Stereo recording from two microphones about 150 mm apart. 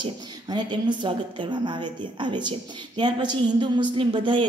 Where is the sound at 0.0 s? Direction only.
30° right (ahead or behind).